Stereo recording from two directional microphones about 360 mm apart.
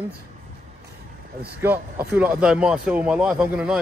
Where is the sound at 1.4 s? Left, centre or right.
Centre.